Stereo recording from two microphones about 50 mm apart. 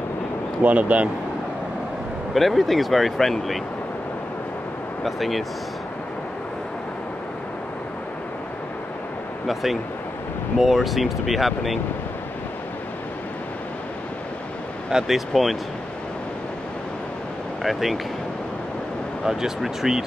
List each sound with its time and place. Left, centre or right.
0.7 s speech: right
2.3 s speech: centre
5.0 s speech: centre
9.5 s speech: centre
14.9 s speech: centre
17.6 s speech: centre
19.2 s speech: centre